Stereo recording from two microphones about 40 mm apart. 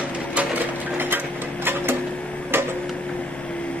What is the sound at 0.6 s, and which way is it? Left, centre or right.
Sewing machine, right.